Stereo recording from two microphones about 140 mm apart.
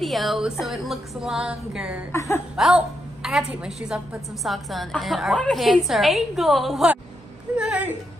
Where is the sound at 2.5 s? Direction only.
5° right (ahead or behind).